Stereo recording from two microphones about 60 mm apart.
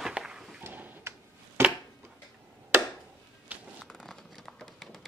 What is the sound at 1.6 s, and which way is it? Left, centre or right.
Chopping, right.